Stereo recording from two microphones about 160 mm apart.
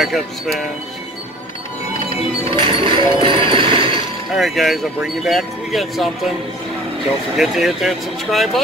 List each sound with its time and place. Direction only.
0.0 s speech: centre (ahead or behind)
2.6 s music: 30° right (ahead or behind)
4.4 s speech: centre (ahead or behind)
7.3 s speech: centre (ahead or behind)